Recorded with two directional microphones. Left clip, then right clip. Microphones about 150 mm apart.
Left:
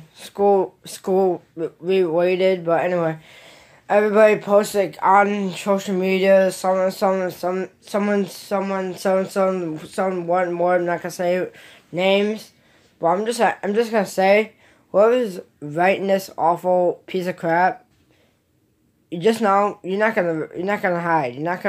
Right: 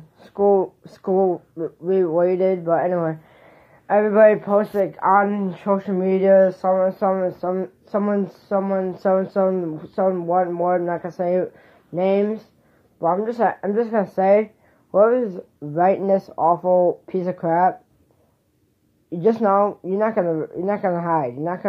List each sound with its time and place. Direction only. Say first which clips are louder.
0.3 s speech: even; 15° left (ahead or behind)
7.1 s speech: even; 30° left (ahead or behind)
7.4 s speech: even; centre (ahead or behind)
13.0 s speech: left 1 dB; 10° left (ahead or behind)
19.0 s speech: even; centre (ahead or behind)